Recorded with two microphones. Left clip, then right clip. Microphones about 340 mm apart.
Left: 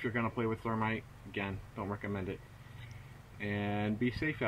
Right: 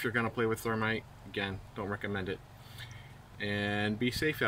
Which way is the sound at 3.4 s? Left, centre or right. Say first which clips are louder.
Right 4 dB; centre.